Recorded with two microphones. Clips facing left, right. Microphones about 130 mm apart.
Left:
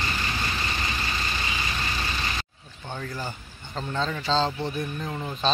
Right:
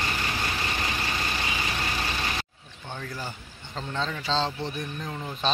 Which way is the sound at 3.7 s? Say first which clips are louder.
Left 2 dB; 5° left (ahead or behind).